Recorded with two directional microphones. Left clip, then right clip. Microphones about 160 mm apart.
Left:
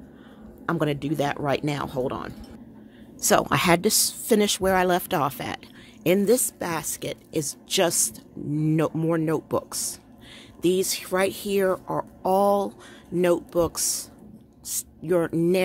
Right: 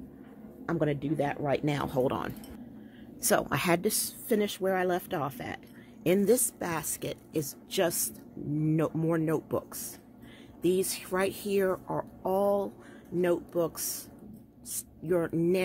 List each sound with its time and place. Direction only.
0.7 s a woman's voice: 20° left (ahead or behind)
1.6 s speech: centre (ahead or behind)
1.9 s speech: 10° right (ahead or behind)
3.2 s a woman's voice: 15° left (ahead or behind)
6.0 s a woman's voice: 15° left (ahead or behind)
7.4 s a woman's voice: 20° left (ahead or behind)